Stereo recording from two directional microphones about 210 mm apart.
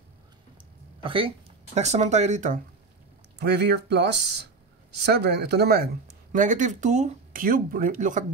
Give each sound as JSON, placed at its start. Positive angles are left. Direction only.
{"t": 0.6, "sound": "a sound", "side_deg": -25}
{"t": 1.8, "sound": "speech", "side_deg": -35}
{"t": 3.3, "sound": "speech", "side_deg": -50}